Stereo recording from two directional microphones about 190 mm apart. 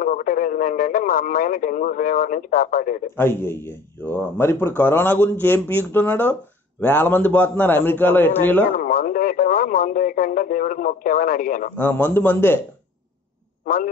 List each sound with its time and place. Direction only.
0.0 s speech: 45° left (ahead or behind)
3.2 s speech: 10° left (ahead or behind)
8.6 s speech: 45° left (ahead or behind)
11.7 s speech: 10° left (ahead or behind)